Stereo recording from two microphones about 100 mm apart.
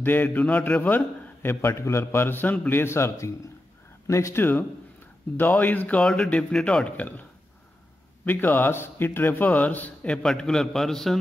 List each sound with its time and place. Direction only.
0.0 s a man's voice: 20° left (ahead or behind)
8.3 s speech: 20° left (ahead or behind)